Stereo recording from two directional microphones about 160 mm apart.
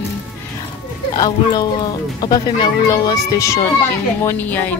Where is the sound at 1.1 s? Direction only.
25° left (ahead or behind).